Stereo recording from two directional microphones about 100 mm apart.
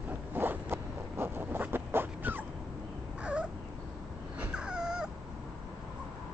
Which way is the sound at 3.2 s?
10° right (ahead or behind).